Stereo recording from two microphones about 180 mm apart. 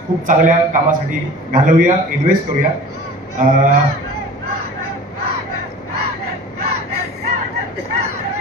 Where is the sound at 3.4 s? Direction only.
50° right (ahead or behind).